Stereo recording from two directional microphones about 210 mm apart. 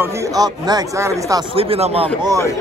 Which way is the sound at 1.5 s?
25° right (ahead or behind).